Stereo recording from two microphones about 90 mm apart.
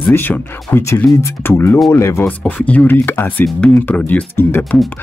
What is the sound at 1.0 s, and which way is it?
Speech, centre (ahead or behind).